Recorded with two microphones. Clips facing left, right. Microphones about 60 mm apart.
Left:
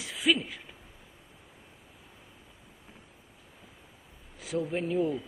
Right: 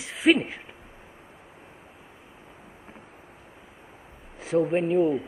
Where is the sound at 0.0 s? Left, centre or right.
Right.